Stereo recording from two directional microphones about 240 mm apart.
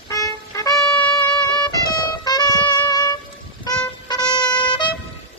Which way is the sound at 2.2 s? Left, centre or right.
Centre.